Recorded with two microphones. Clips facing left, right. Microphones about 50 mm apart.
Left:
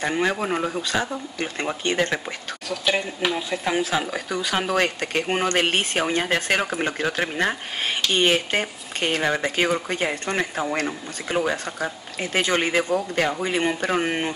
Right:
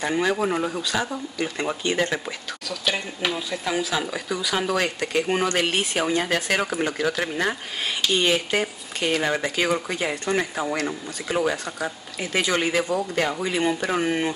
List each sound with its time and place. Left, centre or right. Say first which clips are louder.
0.0 s speech: right 1 dB; left
2.8 s speech: left 3 dB; centre
3.4 s speech: left 2 dB; left